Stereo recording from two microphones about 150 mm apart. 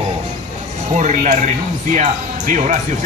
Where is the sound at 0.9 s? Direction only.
50° right (ahead or behind).